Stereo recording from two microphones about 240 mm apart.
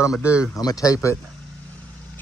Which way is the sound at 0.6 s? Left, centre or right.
Centre.